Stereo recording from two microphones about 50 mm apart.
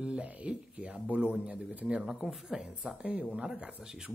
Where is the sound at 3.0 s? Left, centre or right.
Right.